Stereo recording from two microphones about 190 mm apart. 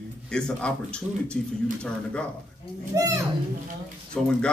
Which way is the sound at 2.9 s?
15° right (ahead or behind).